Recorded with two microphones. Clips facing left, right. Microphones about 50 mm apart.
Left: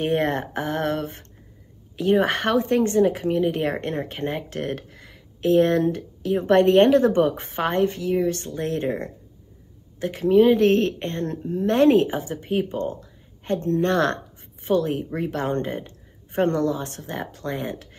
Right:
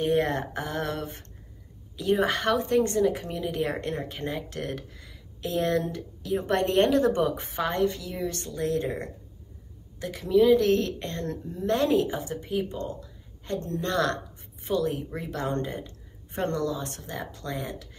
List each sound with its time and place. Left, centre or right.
0.0 s speech: left